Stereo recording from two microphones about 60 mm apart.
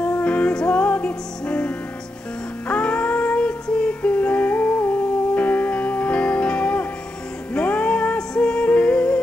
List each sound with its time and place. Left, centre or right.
0.0 s music: left
2.7 s music: centre